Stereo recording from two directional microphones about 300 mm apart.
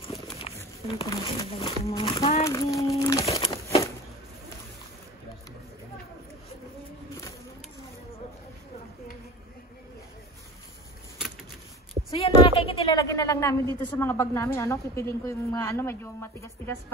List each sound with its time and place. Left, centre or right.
0.0 s speech: centre
3.0 s crumpling: centre
12.1 s a woman's voice: centre